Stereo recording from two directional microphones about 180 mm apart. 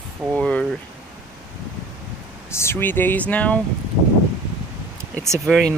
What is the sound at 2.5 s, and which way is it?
Speech, 15° left (ahead or behind).